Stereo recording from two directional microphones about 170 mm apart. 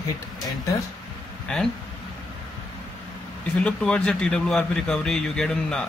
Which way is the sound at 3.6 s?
5° left (ahead or behind).